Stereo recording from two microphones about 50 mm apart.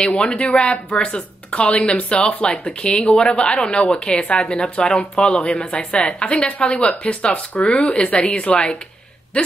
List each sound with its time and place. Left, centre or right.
0.0 s speech: centre